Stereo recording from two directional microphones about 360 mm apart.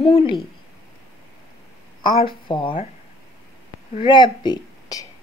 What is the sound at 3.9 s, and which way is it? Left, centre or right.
A woman's voice, centre.